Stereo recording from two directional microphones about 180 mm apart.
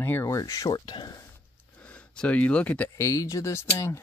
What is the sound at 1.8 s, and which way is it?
Speech, 5° left (ahead or behind).